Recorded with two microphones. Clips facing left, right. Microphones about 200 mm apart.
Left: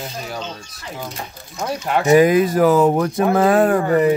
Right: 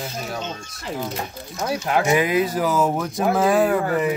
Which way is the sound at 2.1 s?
45° left (ahead or behind).